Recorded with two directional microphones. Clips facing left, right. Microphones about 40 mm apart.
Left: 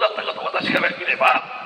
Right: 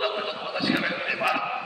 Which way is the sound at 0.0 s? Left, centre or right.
Left.